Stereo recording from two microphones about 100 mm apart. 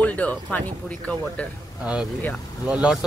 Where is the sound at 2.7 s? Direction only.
10° right (ahead or behind).